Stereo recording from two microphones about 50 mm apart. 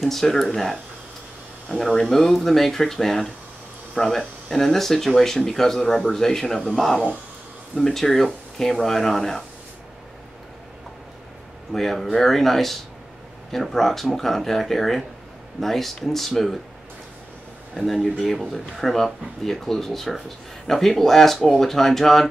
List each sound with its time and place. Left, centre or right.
0.0 s speech: centre
1.8 s speech: centre
11.7 s speech: centre
17.7 s speech: centre
18.0 s speech: centre
18.3 s speech: centre